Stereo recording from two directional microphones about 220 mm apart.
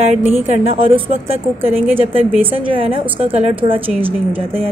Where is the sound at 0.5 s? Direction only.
25° right (ahead or behind).